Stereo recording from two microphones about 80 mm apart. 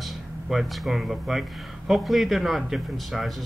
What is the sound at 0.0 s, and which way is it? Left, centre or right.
A man's voice, centre.